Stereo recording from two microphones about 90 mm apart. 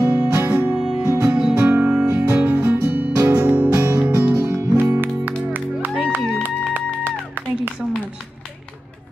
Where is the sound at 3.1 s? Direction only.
40° right (ahead or behind).